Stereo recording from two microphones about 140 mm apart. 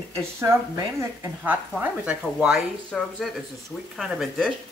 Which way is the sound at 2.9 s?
5° left (ahead or behind).